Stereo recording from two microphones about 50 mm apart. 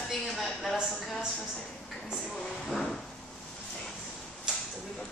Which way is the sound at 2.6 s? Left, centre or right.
Centre.